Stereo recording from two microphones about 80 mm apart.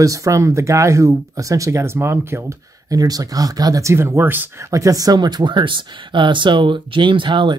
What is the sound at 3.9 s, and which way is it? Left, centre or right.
Speech, right.